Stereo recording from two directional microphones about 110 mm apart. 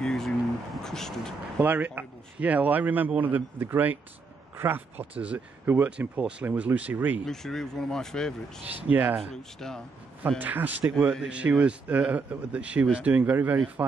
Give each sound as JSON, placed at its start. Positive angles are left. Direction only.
{"t": 0.0, "sound": "a sound", "side_deg": 5}
{"t": 0.8, "sound": "speech", "side_deg": 5}
{"t": 1.6, "sound": "a man's voice", "side_deg": -15}
{"t": 7.2, "sound": "speech", "side_deg": 5}
{"t": 8.8, "sound": "a man's voice", "side_deg": -15}
{"t": 9.3, "sound": "speech", "side_deg": 5}
{"t": 10.4, "sound": "a man's voice", "side_deg": -15}